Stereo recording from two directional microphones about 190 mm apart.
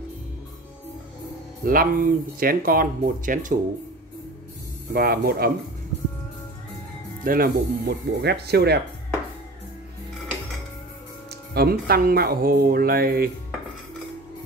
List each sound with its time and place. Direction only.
1.6 s speech: 50° right (ahead or behind)
4.9 s speech: 55° right (ahead or behind)
7.2 s speech: 50° right (ahead or behind)
11.5 s speech: 55° right (ahead or behind)